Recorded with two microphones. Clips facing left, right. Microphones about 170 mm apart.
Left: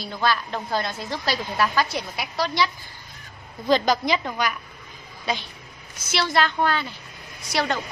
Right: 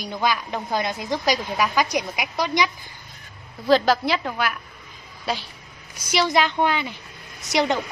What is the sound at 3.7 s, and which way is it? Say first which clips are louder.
Speech: right 2 dB; 5° right (ahead or behind).